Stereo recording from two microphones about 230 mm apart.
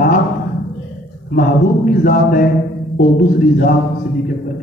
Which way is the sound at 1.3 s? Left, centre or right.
Left.